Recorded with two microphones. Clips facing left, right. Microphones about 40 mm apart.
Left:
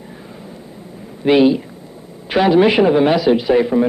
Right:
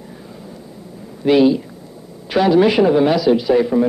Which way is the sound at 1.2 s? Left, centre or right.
Left.